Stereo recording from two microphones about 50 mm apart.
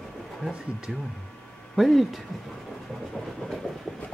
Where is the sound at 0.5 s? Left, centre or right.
Centre.